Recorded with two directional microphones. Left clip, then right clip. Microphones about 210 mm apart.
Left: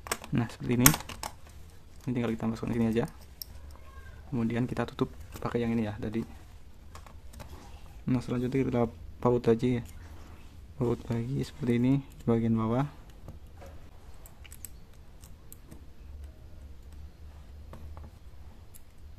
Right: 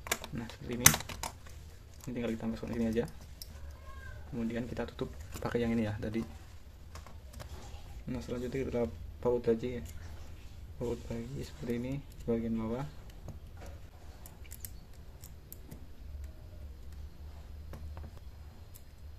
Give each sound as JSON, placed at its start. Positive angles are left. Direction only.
{"t": 0.0, "sound": "a sound", "side_deg": 10}
{"t": 0.3, "sound": "speech", "side_deg": 35}
{"t": 0.8, "sound": "speech", "side_deg": 10}
{"t": 2.0, "sound": "speech", "side_deg": 30}
{"t": 4.4, "sound": "speech", "side_deg": 30}
{"t": 5.4, "sound": "speech", "side_deg": 15}
{"t": 8.1, "sound": "speech", "side_deg": 35}